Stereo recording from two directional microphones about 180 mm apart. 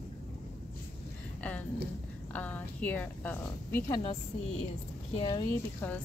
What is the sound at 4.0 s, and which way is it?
Speech, 35° left (ahead or behind).